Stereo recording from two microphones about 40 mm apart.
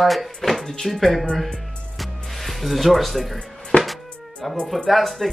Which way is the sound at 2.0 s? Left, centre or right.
Centre.